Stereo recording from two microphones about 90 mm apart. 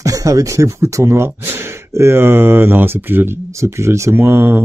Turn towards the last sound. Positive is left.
turn(degrees=-25)  # may be behind; listen again after turning